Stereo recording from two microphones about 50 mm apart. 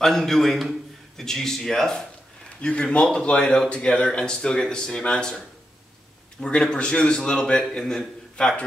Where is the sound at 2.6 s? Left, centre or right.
Left.